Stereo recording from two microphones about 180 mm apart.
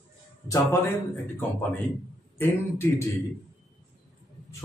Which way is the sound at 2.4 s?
15° left (ahead or behind).